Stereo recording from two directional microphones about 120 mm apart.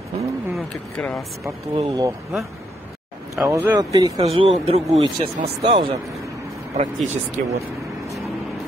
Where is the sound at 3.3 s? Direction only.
25° right (ahead or behind).